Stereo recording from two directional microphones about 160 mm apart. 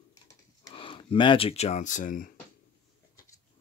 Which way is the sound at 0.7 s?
35° left (ahead or behind).